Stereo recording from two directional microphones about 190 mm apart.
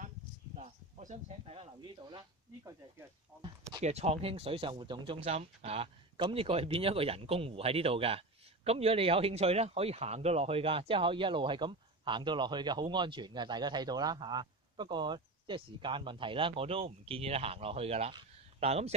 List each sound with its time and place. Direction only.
0.6 s speech: 35° right (ahead or behind)
3.8 s speech: 35° right (ahead or behind)